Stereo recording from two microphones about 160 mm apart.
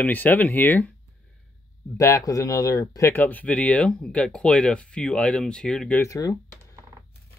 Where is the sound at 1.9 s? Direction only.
20° left (ahead or behind); by 6.0 s 5° left (ahead or behind).